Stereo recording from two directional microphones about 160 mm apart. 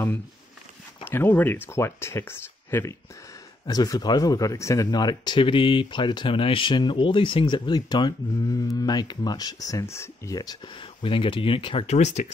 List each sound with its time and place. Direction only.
1.0 s speech: 10° left (ahead or behind); by 12.3 s 45° left (ahead or behind)